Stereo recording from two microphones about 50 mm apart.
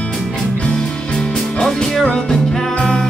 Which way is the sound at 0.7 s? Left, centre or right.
Centre.